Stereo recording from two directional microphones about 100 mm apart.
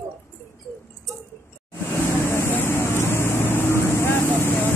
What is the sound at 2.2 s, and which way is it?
Vehicle, 25° left (ahead or behind).